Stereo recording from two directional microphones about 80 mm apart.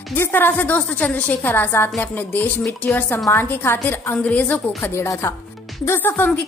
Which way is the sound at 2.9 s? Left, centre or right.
Left.